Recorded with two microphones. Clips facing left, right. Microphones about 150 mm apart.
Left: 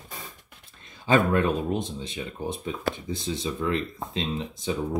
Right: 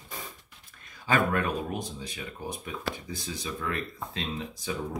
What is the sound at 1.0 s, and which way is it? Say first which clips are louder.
Speech: left 5 dB; 25° left (ahead or behind).